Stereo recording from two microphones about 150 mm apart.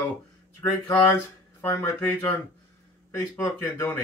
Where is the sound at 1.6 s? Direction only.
15° left (ahead or behind).